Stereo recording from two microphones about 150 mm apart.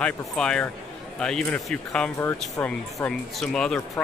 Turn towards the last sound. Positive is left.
turn(degrees=5)  # may be behind; listen again after turning